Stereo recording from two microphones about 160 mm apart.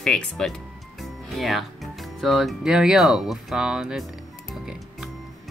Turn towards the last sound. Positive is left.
turn(degrees=0)  # may be behind; listen again after turning